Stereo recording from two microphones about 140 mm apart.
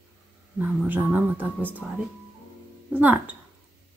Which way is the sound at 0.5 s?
15° right (ahead or behind).